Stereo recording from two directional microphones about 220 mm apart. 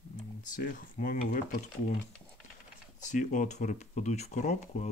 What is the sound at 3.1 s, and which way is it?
Speech, 35° left (ahead or behind).